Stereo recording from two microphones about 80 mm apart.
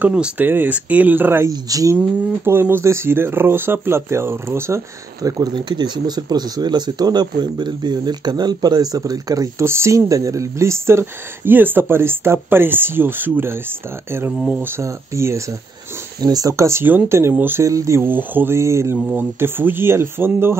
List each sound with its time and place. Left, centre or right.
0.0 s speech: centre
1.5 s speech: right
2.4 s speech: right
5.2 s speech: right
9.6 s speech: right
16.2 s speech: right
16.8 s speech: right
17.6 s speech: right
19.1 s speech: right